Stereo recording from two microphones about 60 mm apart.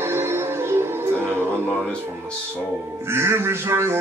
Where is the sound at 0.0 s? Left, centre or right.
Right.